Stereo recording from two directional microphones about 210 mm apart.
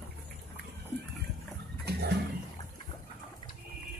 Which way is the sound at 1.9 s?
50° right (ahead or behind).